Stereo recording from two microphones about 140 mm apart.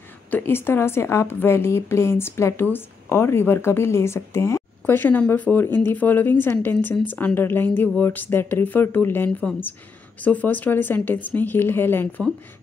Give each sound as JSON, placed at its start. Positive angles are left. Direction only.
{"t": 0.3, "sound": "a woman's voice", "side_deg": 15}